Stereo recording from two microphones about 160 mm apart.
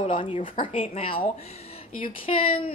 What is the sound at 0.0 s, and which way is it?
A woman's voice, 30° left (ahead or behind).